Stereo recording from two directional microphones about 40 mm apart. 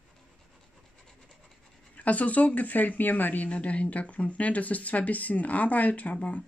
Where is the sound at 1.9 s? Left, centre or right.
Left.